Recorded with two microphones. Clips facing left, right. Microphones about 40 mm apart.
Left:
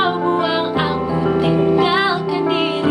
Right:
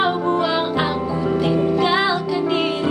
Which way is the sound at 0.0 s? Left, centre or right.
Centre.